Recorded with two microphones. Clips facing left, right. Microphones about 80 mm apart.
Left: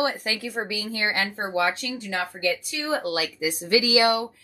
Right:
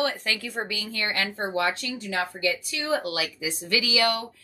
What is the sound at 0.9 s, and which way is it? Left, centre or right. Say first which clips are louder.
Speech: left 4 dB; left.